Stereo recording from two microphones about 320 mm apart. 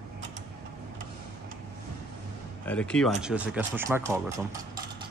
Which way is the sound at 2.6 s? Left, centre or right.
Centre.